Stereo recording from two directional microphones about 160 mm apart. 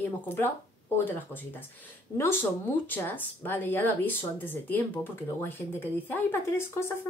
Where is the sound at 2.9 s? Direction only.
10° left (ahead or behind).